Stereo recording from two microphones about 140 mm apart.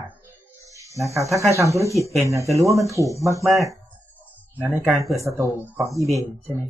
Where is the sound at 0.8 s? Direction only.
20° right (ahead or behind).